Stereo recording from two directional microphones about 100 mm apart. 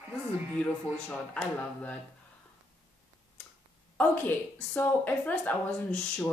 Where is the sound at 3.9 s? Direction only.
15° left (ahead or behind).